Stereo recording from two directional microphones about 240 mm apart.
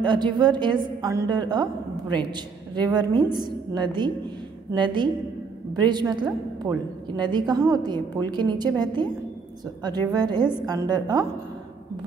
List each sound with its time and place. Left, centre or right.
0.0 s a woman's voice: centre